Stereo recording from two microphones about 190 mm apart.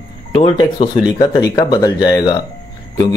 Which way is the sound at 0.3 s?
30° left (ahead or behind).